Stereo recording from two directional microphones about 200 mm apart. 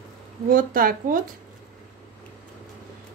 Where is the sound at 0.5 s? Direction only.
45° right (ahead or behind).